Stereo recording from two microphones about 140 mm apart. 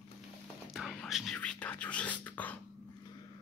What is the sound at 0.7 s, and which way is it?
Speech, centre (ahead or behind).